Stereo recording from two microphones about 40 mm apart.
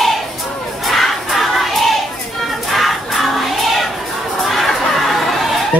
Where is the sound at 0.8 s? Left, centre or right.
Centre.